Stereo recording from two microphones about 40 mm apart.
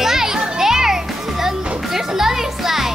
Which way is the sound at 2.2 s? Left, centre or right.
Centre.